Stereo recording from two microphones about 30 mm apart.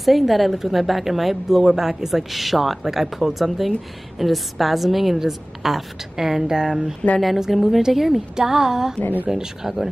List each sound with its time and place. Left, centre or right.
0.0 s a woman's voice: centre
7.0 s speech: left
7.5 s a woman's voice: centre